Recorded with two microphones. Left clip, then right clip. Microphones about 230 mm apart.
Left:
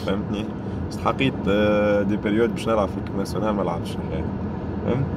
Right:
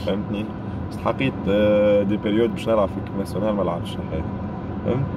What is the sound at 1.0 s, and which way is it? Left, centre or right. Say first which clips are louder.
Speech: left 1 dB; centre.